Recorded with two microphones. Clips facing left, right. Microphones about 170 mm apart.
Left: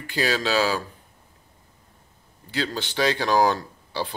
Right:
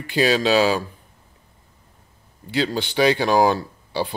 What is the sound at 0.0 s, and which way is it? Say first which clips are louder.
Speech: right 6 dB; 20° right (ahead or behind).